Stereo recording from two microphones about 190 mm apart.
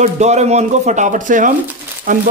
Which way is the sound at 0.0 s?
35° right (ahead or behind).